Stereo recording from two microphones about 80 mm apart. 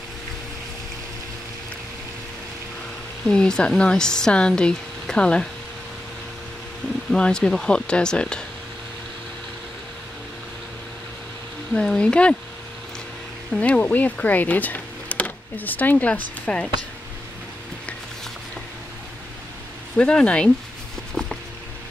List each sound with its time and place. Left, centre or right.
3.3 s speech: centre
7.1 s speech: centre
11.7 s speech: centre
13.5 s speech: centre
20.0 s speech: centre
21.1 s a sound: centre